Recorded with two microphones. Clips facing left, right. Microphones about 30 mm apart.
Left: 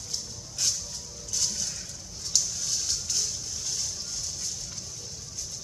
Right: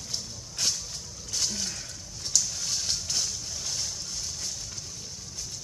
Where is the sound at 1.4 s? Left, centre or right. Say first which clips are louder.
Right 1 dB; right.